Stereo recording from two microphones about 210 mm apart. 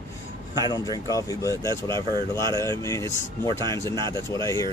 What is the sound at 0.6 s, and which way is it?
Speech, 20° left (ahead or behind).